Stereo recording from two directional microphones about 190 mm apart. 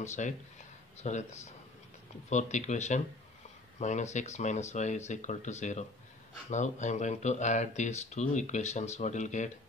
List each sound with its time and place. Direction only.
0.0 s speech: 40° left (ahead or behind)